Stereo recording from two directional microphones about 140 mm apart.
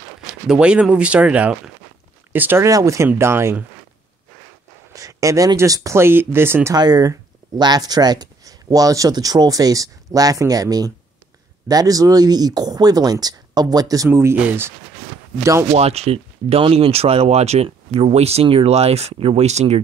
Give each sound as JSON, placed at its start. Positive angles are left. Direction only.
{"t": 0.5, "sound": "speech", "side_deg": -5}
{"t": 4.9, "sound": "speech", "side_deg": -25}
{"t": 6.7, "sound": "speech", "side_deg": -30}
{"t": 15.7, "sound": "speech", "side_deg": -50}